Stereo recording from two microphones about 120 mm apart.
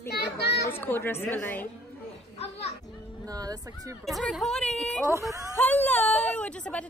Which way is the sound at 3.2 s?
30° right (ahead or behind).